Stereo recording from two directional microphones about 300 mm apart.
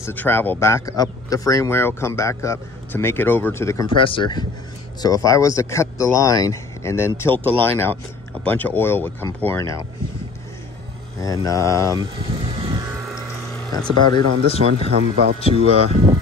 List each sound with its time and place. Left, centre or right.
0.0 s speech: centre
11.1 s speech: centre
12.5 s music: centre
13.7 s speech: centre
14.6 s speech: centre
15.4 s speech: centre
15.9 s speech: centre